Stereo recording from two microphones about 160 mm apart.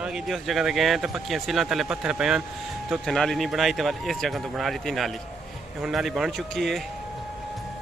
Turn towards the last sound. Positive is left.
turn(degrees=0)  # may be behind; listen again after turning